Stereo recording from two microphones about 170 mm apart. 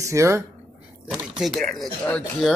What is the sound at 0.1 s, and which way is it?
Speech, 15° right (ahead or behind).